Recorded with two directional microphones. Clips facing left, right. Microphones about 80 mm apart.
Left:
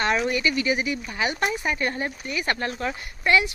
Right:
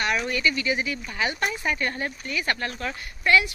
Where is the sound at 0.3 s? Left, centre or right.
Left.